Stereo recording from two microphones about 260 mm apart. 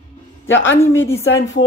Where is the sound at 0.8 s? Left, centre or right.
Centre.